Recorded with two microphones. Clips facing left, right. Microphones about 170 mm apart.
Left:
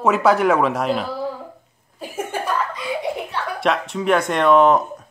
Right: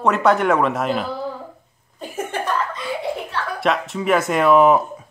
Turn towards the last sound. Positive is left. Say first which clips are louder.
# even
turn(degrees=-5)  # may be behind; listen again after turning